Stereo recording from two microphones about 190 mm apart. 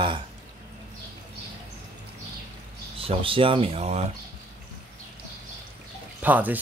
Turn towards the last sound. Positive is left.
turn(degrees=-10)  # may be behind; listen again after turning